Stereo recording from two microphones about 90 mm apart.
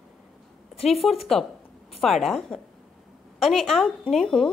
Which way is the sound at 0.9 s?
Centre (ahead or behind).